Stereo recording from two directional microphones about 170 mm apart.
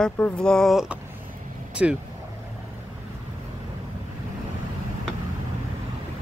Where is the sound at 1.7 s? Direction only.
5° right (ahead or behind).